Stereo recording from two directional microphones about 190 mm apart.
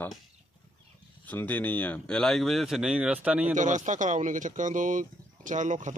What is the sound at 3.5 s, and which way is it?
Speech, 40° right (ahead or behind).